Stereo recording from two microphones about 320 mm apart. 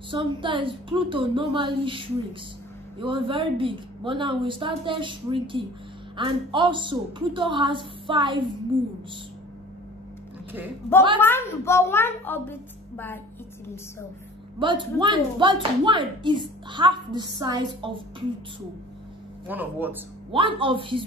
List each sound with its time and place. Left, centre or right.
0.1 s speech: centre
11.1 s a child's voice: centre
14.6 s speech: centre
19.4 s speech: centre
20.2 s speech: centre